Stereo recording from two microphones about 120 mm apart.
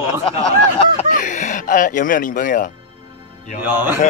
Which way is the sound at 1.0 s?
90° left.